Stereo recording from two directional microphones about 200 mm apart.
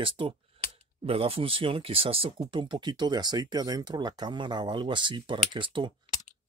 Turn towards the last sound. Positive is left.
turn(degrees=-25)  # may be behind; listen again after turning